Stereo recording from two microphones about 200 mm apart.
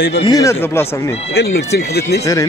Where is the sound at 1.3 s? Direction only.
55° left (ahead or behind).